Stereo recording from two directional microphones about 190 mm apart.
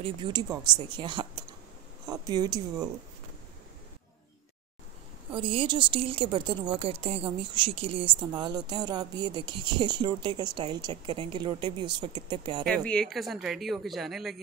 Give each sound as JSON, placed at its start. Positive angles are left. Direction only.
{"t": 0.0, "sound": "speech", "side_deg": -25}
{"t": 5.3, "sound": "speech", "side_deg": -30}
{"t": 12.6, "sound": "speech", "side_deg": 5}